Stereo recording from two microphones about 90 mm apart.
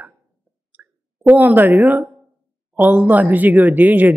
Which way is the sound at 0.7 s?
20° right (ahead or behind).